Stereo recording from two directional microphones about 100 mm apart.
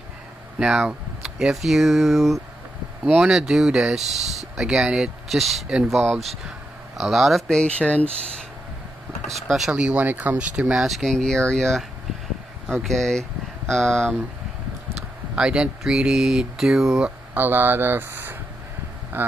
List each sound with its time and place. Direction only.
0.6 s speech: 5° right (ahead or behind); by 8.1 s 15° left (ahead or behind)
9.5 s speech: centre (ahead or behind)
9.8 s speech: 15° right (ahead or behind); by 11.8 s 5° left (ahead or behind)
12.8 s speech: 5° left (ahead or behind)
15.3 s speech: 10° right (ahead or behind)
17.3 s speech: 20° right (ahead or behind)